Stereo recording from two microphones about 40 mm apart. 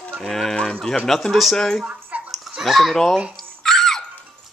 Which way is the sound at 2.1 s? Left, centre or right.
Right.